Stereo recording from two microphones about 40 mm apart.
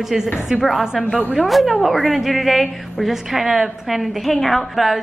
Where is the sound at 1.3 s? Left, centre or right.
Centre.